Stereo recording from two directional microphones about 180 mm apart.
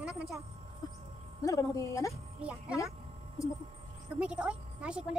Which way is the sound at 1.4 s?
20° left (ahead or behind).